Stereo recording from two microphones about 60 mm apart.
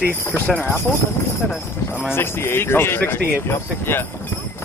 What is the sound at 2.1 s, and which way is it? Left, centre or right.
Speech, left.